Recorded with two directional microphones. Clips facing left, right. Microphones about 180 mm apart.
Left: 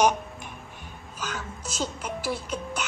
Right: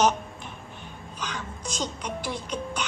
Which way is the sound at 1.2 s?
5° left (ahead or behind).